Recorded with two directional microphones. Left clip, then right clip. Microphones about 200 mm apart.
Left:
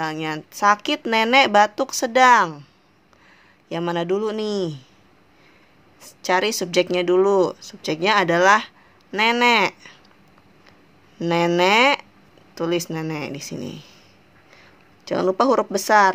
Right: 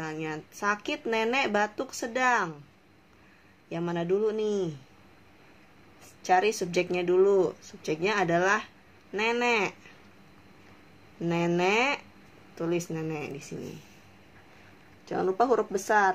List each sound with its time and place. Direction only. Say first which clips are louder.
0.0 s speech: left 9 dB; 40° left (ahead or behind)
3.6 s speech: left 8 dB; 40° left (ahead or behind)
6.2 s speech: left 4 dB; 40° left (ahead or behind)
11.1 s speech: left 9 dB; 40° left (ahead or behind)
15.0 s speech: left 7 dB; 50° left (ahead or behind)